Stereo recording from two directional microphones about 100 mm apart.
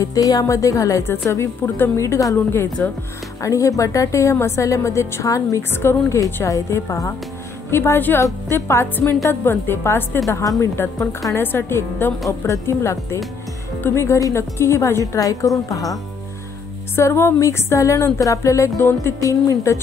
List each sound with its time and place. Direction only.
0.0 s a woman's voice: 40° left (ahead or behind)
16.9 s a woman's voice: 25° left (ahead or behind)